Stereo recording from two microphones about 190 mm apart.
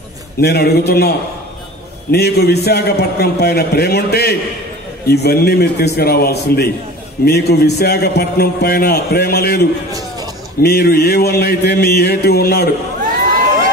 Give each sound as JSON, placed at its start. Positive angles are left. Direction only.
{"t": 0.4, "sound": "a man's voice", "side_deg": 55}
{"t": 9.9, "sound": "a sound", "side_deg": -20}
{"t": 10.6, "sound": "a man's voice", "side_deg": 55}